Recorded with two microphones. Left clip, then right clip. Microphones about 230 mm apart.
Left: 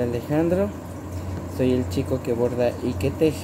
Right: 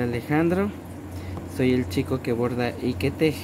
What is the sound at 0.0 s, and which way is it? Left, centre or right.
Speech, right.